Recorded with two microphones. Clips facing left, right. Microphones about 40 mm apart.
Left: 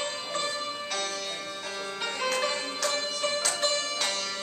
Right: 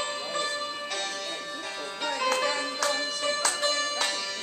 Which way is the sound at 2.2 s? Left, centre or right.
Centre.